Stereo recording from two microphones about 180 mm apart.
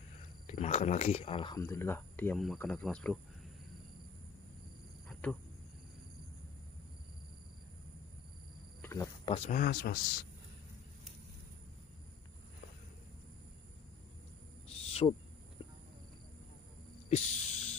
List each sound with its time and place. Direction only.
0.5 s speech: 40° left (ahead or behind)
1.6 s speech: 15° left (ahead or behind)
5.0 s a sound: 5° left (ahead or behind)
8.8 s wild animals: 15° left (ahead or behind)
9.2 s speech: 35° left (ahead or behind)
9.6 s speech: 55° left (ahead or behind)
14.7 s insect: 35° left (ahead or behind)
17.1 s music: 40° left (ahead or behind)